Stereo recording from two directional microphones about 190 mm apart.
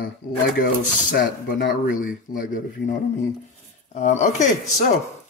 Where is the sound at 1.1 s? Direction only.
50° left (ahead or behind).